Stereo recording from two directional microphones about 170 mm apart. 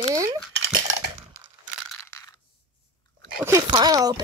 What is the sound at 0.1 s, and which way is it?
Cutlery, 20° right (ahead or behind).